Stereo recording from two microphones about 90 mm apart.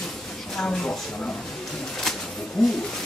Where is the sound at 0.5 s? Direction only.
5° left (ahead or behind).